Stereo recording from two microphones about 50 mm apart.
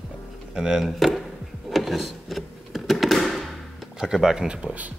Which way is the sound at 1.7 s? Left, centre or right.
Centre.